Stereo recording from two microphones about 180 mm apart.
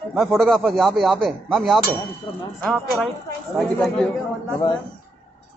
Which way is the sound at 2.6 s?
Centre (ahead or behind).